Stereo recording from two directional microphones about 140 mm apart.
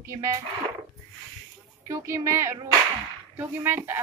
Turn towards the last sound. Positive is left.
turn(degrees=-15)  # may be behind; listen again after turning